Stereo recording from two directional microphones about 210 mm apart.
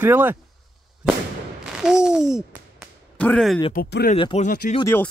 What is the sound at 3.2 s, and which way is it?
Speech, 5° left (ahead or behind).